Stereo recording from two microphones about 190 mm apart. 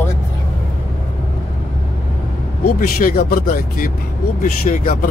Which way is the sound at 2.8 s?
50° left (ahead or behind).